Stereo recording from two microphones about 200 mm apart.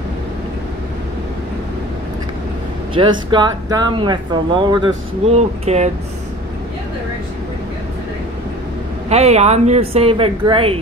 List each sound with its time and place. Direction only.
2.9 s speech: 25° right (ahead or behind)
9.1 s speech: 30° right (ahead or behind)